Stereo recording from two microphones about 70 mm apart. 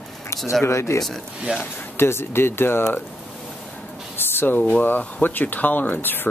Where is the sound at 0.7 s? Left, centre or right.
Left.